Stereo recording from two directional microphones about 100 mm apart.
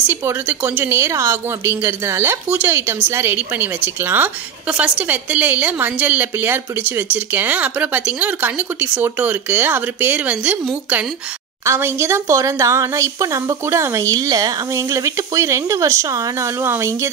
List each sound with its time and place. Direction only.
0.0 s a woman's voice: 20° right (ahead or behind)
11.6 s a woman's voice: 25° right (ahead or behind)